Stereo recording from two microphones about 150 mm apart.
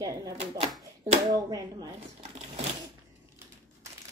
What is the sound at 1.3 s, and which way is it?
Speech, 25° right (ahead or behind).